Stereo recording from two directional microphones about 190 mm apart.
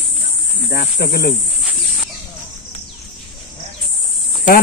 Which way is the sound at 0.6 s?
55° left (ahead or behind).